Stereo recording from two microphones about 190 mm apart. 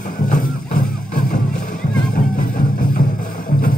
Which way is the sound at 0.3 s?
45° left (ahead or behind).